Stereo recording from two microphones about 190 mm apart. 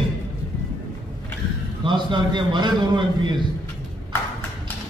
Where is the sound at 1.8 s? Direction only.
25° right (ahead or behind).